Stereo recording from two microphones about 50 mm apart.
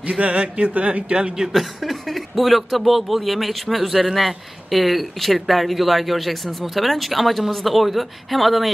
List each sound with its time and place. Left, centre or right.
0.0 s a man's voice: right
1.5 s speech: centre